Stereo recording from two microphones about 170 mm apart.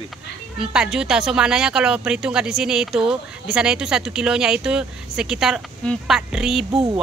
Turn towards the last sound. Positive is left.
turn(degrees=-25)  # may be behind; listen again after turning